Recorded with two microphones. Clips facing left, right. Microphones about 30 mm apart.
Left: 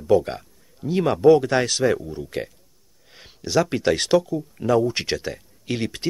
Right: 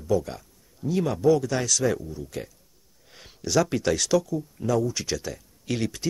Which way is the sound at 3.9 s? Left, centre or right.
Left.